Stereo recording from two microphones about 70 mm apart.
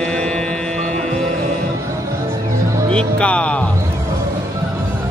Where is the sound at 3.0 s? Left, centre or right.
Centre.